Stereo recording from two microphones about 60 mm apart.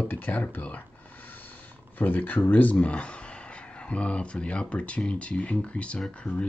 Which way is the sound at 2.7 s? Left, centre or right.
Centre.